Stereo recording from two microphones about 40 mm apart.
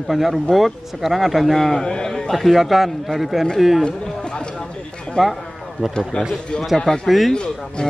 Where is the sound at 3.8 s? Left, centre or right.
Centre.